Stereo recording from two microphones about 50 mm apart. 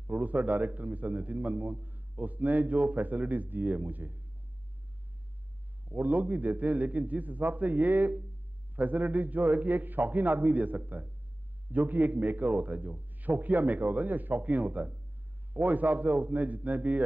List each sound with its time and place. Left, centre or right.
0.0 s a man's voice: right
5.9 s a man's voice: right